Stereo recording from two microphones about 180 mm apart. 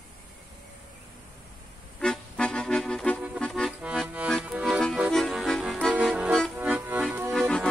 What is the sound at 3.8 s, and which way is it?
Accordion, 5° right (ahead or behind).